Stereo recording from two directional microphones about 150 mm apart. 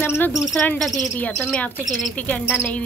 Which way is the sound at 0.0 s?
15° left (ahead or behind).